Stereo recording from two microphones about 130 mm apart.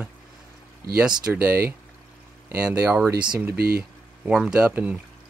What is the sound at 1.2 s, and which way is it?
Speech, 15° right (ahead or behind).